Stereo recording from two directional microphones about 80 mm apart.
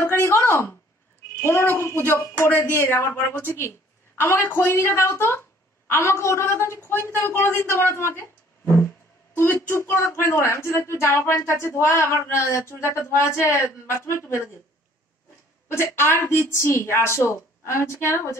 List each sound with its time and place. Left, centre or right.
0.0 s a sound: left
1.4 s speech: left
15.7 s speech: left